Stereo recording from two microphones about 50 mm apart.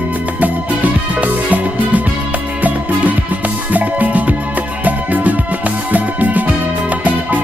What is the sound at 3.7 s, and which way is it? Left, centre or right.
Music, right.